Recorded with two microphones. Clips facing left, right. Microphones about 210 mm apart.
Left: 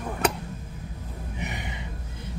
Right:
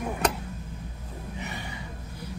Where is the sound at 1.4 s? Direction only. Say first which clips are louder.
Left 4 dB; 20° left (ahead or behind).